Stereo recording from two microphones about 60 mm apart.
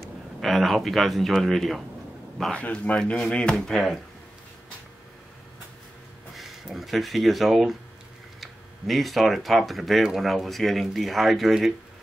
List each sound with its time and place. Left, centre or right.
0.4 s speech: centre
2.5 s speech: left
3.0 s speech: centre
6.3 s speech: centre